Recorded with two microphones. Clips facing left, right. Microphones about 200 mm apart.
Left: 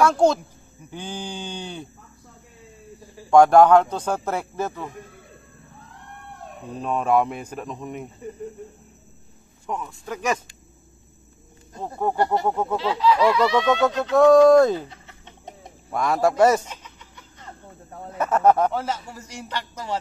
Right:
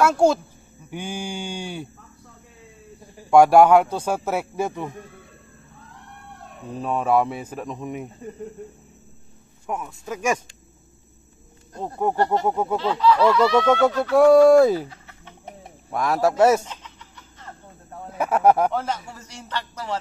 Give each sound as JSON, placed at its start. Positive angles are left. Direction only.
{"t": 0.0, "sound": "speech", "side_deg": -10}
{"t": 3.3, "sound": "speech", "side_deg": -10}
{"t": 6.8, "sound": "speech", "side_deg": -5}
{"t": 9.7, "sound": "speech", "side_deg": -10}
{"t": 11.8, "sound": "speech", "side_deg": -15}
{"t": 12.7, "sound": "a sound", "side_deg": 10}
{"t": 14.1, "sound": "speech", "side_deg": -10}
{"t": 14.9, "sound": "chicken", "side_deg": 20}
{"t": 15.9, "sound": "speech", "side_deg": 0}
{"t": 16.6, "sound": "chicken", "side_deg": 10}
{"t": 18.1, "sound": "speech", "side_deg": -10}
{"t": 18.7, "sound": "a sound", "side_deg": 5}